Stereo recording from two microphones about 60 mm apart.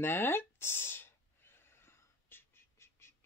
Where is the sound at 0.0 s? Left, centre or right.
Left.